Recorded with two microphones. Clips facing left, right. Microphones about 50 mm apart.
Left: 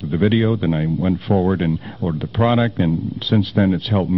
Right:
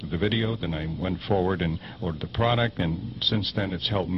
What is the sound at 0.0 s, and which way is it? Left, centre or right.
A woman's voice, centre.